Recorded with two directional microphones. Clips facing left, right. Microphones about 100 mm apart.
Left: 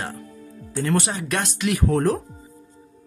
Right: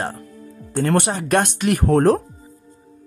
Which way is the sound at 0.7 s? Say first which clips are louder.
Right 4 dB; 55° right (ahead or behind).